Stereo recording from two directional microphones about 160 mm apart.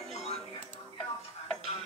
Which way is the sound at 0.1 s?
40° left (ahead or behind).